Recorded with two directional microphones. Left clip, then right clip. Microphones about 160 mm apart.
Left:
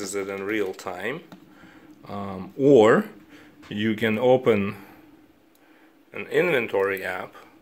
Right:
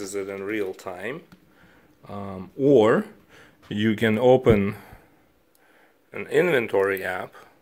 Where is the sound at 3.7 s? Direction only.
40° right (ahead or behind).